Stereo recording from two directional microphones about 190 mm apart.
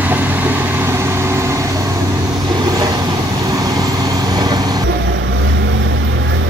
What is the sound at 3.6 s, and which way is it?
Vehicle, 20° right (ahead or behind).